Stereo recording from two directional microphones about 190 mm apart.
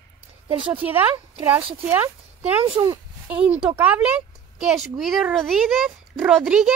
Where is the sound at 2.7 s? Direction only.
25° right (ahead or behind).